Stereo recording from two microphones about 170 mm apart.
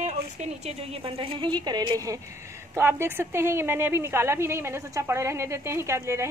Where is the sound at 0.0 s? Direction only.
40° right (ahead or behind).